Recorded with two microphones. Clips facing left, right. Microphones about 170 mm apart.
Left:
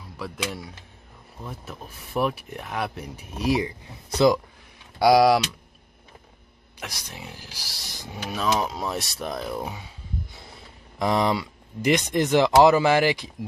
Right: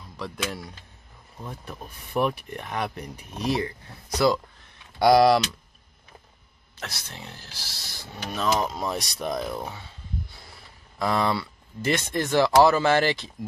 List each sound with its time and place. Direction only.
0.2 s speech: 5° left (ahead or behind); by 4.4 s 20° left (ahead or behind)
4.9 s speech: 5° left (ahead or behind)
6.8 s speech: 15° left (ahead or behind)
8.3 s speech: 5° left (ahead or behind)
11.0 s speech: 15° left (ahead or behind)